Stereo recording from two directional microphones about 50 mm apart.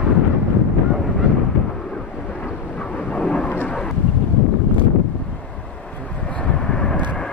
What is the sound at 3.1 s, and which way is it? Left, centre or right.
Thunder, centre.